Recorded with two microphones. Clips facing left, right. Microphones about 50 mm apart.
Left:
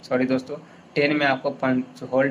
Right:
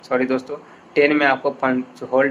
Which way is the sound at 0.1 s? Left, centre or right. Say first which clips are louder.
Right 2 dB; right.